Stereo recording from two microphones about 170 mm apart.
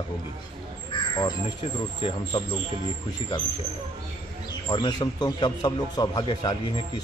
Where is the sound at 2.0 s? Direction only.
30° left (ahead or behind).